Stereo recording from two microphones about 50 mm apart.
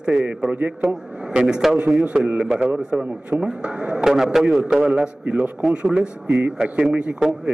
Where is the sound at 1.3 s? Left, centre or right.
Centre.